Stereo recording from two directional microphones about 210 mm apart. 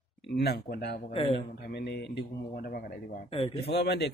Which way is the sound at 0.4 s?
50° left (ahead or behind).